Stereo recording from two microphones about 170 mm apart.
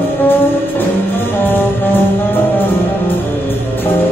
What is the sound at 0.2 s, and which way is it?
Music, 10° left (ahead or behind).